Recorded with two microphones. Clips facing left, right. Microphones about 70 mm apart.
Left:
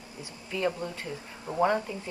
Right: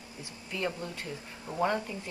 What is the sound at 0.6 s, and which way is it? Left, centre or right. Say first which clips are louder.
Speech: left 4 dB; centre.